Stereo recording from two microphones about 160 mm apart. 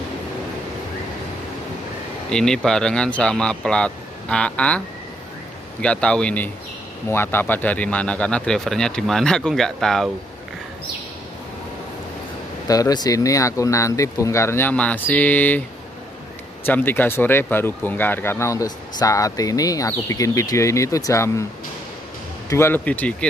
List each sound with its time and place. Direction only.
2.3 s speech: 5° left (ahead or behind)
12.6 s speech: 20° left (ahead or behind)
16.6 s speech: 15° left (ahead or behind)
22.5 s speech: 15° left (ahead or behind)